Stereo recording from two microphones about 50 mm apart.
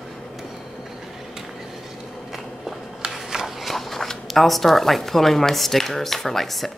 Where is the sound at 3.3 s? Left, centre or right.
Centre.